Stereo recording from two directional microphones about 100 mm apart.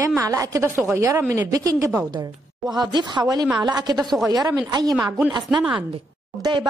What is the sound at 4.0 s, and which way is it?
Speech, 5° left (ahead or behind).